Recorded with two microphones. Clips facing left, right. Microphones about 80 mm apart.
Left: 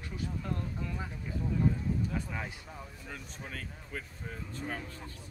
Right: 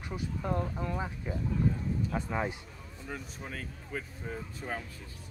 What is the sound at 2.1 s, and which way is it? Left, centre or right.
Speech, right.